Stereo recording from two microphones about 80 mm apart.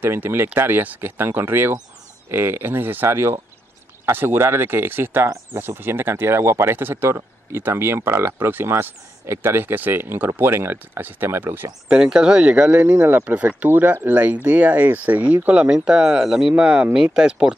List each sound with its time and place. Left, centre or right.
0.0 s speech: right
11.9 s speech: centre